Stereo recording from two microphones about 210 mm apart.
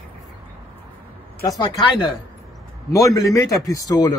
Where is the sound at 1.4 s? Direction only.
15° left (ahead or behind).